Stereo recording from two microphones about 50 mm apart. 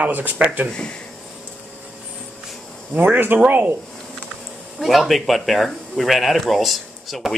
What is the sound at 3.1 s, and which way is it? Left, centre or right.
Speech, right.